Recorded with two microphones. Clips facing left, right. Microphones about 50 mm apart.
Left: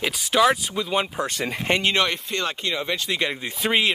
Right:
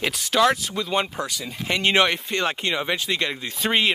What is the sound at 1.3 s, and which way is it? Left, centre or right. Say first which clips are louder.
Speech: left 5 dB; left.